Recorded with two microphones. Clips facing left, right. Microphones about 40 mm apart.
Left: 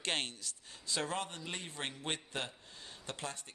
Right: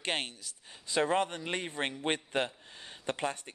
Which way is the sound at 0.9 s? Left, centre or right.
Right.